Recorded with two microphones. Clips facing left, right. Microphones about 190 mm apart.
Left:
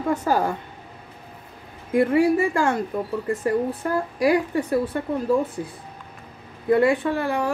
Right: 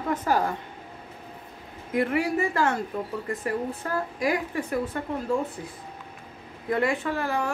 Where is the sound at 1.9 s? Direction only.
30° left (ahead or behind).